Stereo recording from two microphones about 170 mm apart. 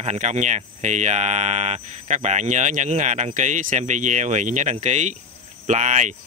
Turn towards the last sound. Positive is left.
turn(degrees=-45)  # may be behind; listen again after turning